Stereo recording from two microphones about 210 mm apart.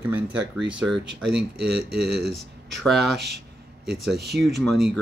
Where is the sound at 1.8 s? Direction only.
50° right (ahead or behind).